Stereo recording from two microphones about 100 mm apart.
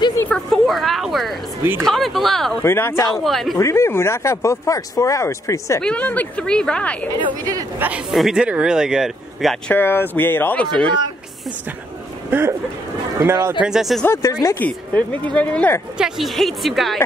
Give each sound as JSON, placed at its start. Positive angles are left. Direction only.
{"t": 0.3, "sound": "a sound", "side_deg": 0}
{"t": 1.8, "sound": "a woman's voice", "side_deg": 0}
{"t": 2.6, "sound": "speech", "side_deg": 25}
{"t": 3.1, "sound": "a woman's voice", "side_deg": 0}
{"t": 3.5, "sound": "speech", "side_deg": 30}
{"t": 5.8, "sound": "speech", "side_deg": 10}
{"t": 8.1, "sound": "speech", "side_deg": -5}
{"t": 9.7, "sound": "speech", "side_deg": 20}
{"t": 12.3, "sound": "speech", "side_deg": -20}
{"t": 13.6, "sound": "a woman's voice", "side_deg": -5}
{"t": 14.0, "sound": "speech", "side_deg": 30}
{"t": 14.6, "sound": "speech", "side_deg": 15}
{"t": 16.0, "sound": "a woman's voice", "side_deg": 0}